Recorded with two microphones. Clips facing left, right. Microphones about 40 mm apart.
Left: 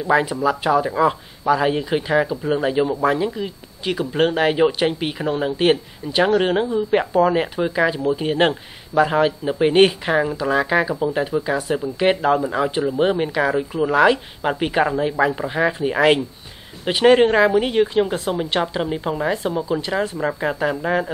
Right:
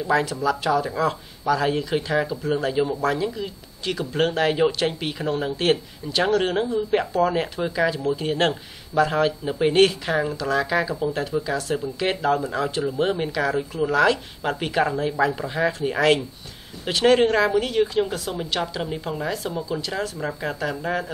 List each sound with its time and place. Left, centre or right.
0.0 s speech: left